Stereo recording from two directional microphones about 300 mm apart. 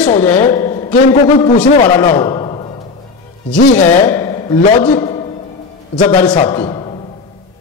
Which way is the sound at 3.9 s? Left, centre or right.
Centre.